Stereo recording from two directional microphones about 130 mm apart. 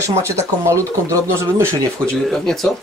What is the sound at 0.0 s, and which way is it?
Speech, 20° right (ahead or behind).